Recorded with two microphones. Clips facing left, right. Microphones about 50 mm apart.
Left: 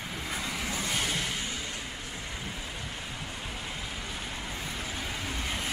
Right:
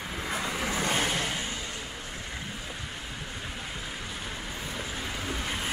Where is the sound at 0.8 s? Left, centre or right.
Right.